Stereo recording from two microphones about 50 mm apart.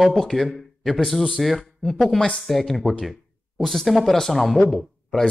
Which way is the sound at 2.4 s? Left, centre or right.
Centre.